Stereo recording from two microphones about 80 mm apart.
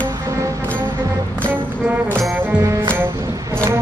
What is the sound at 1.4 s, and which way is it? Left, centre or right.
Music, right.